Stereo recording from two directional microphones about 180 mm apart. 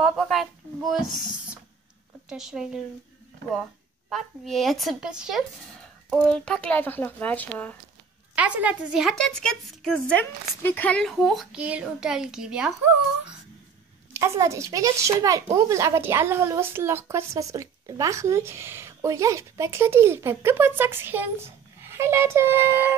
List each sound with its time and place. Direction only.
0.0 s a woman's voice: centre (ahead or behind)
2.2 s a woman's voice: centre (ahead or behind)
4.1 s a woman's voice: centre (ahead or behind)
8.4 s a woman's voice: 10° right (ahead or behind)
14.1 s speech: 15° right (ahead or behind)